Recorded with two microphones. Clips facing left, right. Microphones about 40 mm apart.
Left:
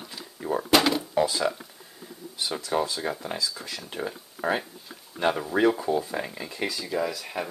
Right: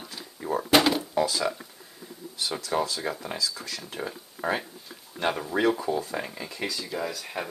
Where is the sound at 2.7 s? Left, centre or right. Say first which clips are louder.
Left 1 dB; centre.